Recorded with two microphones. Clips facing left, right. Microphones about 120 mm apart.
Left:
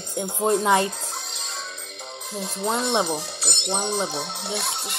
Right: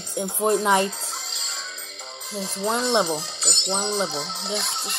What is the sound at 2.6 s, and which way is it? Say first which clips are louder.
Speech: right 1 dB; 5° left (ahead or behind).